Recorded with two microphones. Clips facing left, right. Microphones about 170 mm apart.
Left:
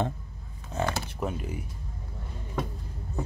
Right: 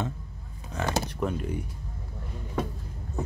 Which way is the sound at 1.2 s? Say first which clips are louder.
Right 1 dB; 10° left (ahead or behind).